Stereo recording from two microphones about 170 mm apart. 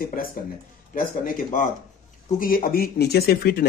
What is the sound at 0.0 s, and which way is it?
A man's voice, 60° left (ahead or behind).